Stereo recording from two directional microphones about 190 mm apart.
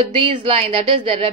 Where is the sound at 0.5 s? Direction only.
30° right (ahead or behind).